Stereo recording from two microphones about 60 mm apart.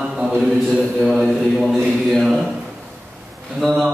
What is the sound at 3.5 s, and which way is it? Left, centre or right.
Speech, centre.